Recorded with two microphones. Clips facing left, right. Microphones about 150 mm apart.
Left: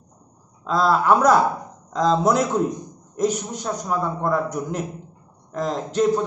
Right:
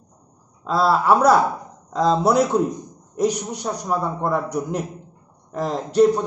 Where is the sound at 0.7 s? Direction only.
5° right (ahead or behind).